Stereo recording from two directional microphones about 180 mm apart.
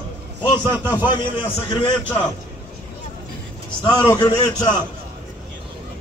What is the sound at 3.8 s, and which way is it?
A man's voice, 25° left (ahead or behind).